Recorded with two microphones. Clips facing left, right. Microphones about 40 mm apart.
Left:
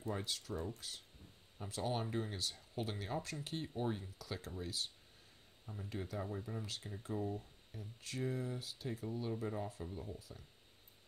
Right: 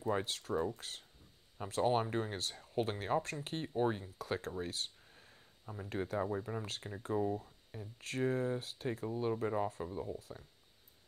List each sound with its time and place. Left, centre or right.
0.0 s speech: right
10.1 s speech: right